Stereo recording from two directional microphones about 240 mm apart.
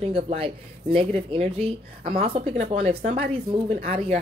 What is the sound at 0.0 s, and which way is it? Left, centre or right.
Speech, right.